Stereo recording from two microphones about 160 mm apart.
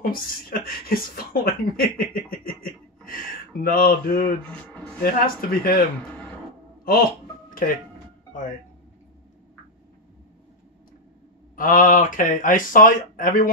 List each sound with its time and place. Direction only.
0.0 s speech: 65° left (ahead or behind)
6.8 s music: 65° left (ahead or behind)
11.5 s speech: 60° left (ahead or behind)